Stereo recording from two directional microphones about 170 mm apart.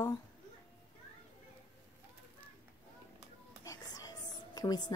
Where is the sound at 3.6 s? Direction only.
20° left (ahead or behind).